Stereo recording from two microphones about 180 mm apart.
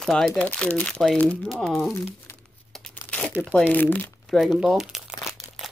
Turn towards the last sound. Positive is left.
turn(degrees=0)  # may be behind; listen again after turning